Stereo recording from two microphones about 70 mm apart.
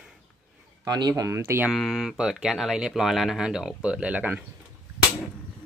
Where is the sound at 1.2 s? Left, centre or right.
Right.